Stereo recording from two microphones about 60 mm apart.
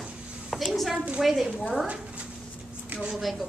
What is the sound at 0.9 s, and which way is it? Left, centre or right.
A woman's voice, centre.